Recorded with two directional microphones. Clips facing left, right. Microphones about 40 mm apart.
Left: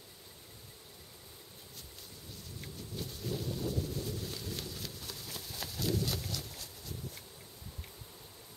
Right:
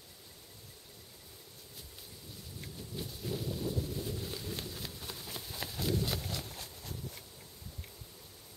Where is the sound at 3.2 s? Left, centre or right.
Centre.